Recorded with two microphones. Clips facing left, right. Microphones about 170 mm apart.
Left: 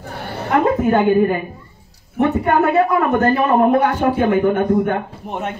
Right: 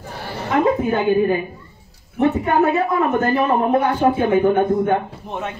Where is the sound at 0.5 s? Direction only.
55° left (ahead or behind).